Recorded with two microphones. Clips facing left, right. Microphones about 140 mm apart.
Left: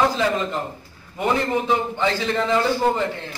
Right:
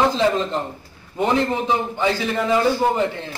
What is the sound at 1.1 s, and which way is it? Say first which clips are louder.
A man's voice: right 2 dB; 20° right (ahead or behind).